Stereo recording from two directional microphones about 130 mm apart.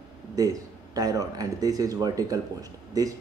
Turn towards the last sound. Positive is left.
turn(degrees=-25)  # may be behind; listen again after turning